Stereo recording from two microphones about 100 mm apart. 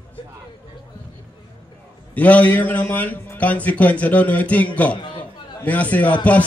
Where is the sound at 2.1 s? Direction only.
15° left (ahead or behind).